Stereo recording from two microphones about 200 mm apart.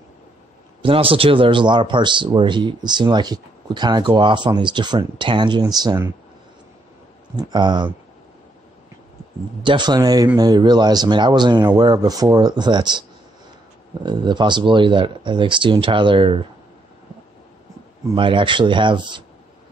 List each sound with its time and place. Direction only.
0.8 s speech: 25° right (ahead or behind)
7.3 s speech: 20° right (ahead or behind)
9.6 s speech: 25° right (ahead or behind)
14.0 s speech: 20° right (ahead or behind)
18.0 s speech: 25° right (ahead or behind)